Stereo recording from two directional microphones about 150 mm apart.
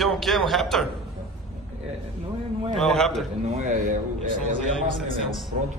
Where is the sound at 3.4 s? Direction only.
50° right (ahead or behind).